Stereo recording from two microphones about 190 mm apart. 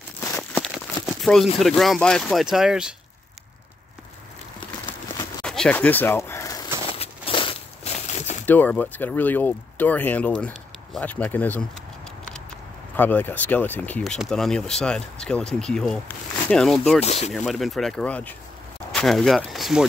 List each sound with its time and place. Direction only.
0.4 s crumpling: centre (ahead or behind)
1.6 s speech: centre (ahead or behind)
5.4 s a sound: 5° left (ahead or behind)
6.9 s crumpling: 30° left (ahead or behind)
8.5 s speech: 10° left (ahead or behind)
12.9 s speech: 10° left (ahead or behind)
17.0 s speech: 35° left (ahead or behind)
17.3 s speech: centre (ahead or behind)